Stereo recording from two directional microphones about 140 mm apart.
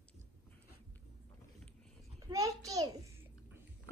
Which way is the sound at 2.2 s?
25° right (ahead or behind).